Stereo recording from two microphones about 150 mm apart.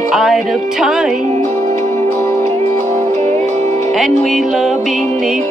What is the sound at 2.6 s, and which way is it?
Music, 45° right (ahead or behind).